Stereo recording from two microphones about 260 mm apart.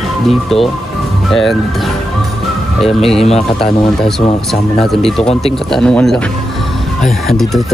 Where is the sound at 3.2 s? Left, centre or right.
Left.